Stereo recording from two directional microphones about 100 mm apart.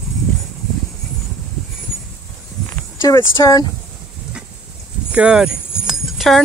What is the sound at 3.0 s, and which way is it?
Speech, 35° left (ahead or behind).